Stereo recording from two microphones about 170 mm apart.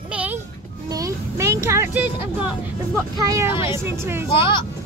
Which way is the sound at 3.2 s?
20° right (ahead or behind).